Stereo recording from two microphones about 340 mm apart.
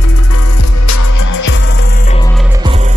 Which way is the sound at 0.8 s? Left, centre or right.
Left.